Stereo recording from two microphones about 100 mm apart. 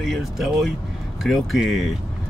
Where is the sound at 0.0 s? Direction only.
Centre (ahead or behind).